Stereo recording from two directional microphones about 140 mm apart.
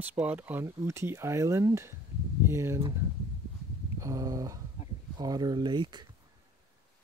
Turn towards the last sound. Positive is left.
turn(degrees=-35)  # may be behind; listen again after turning